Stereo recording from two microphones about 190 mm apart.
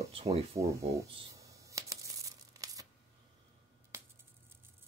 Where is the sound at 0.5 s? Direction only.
15° right (ahead or behind).